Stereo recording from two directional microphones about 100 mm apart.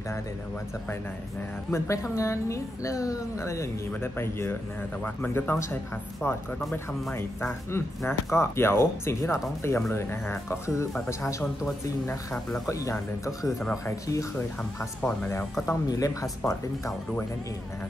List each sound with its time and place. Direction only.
1.7 s a woman's voice: 30° left (ahead or behind)
12.6 s speech: 30° left (ahead or behind)
14.8 s a woman's voice: 20° left (ahead or behind)
15.9 s speech: 35° left (ahead or behind)